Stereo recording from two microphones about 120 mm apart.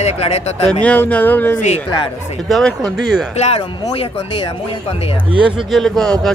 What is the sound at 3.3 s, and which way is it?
Speech, 65° left (ahead or behind).